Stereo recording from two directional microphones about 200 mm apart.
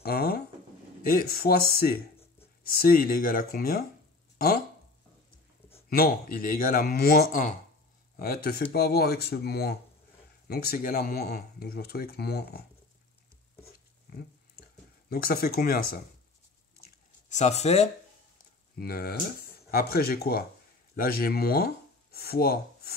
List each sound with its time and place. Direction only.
0.0 s a sound: 50° left (ahead or behind)
1.0 s speech: 45° left (ahead or behind)
5.9 s speech: 45° left (ahead or behind)
14.1 s a sound: 50° left (ahead or behind)
15.0 s speech: 50° left (ahead or behind)
17.3 s speech: 35° left (ahead or behind)
18.8 s speech: 50° left (ahead or behind)